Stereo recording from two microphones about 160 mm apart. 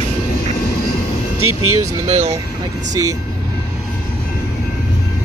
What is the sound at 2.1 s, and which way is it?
Speech, 45° right (ahead or behind).